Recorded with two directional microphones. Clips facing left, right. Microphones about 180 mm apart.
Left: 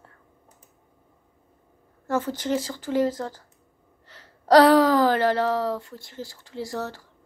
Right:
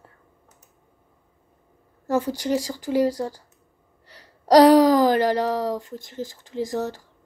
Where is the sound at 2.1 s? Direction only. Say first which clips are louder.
Right 2 dB; 15° right (ahead or behind).